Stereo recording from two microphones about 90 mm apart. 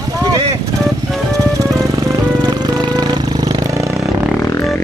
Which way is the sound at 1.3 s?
40° right (ahead or behind).